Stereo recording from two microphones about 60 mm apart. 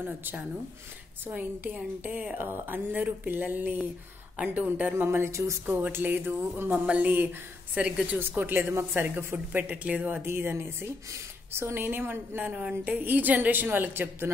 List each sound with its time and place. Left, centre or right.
0.0 s a woman's voice: right
2.0 s speech: centre
2.3 s a woman's voice: right
4.9 s speech: right
5.9 s a woman's voice: right
7.7 s speech: centre
8.2 s a woman's voice: right
10.2 s speech: right
12.4 s a woman's voice: right